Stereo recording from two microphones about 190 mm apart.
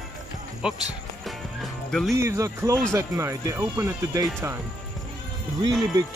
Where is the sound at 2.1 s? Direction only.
15° right (ahead or behind).